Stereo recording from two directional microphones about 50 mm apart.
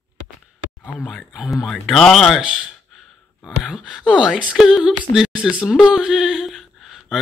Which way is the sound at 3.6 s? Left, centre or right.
Left.